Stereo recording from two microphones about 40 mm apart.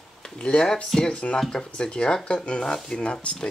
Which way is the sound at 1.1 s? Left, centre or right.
Left.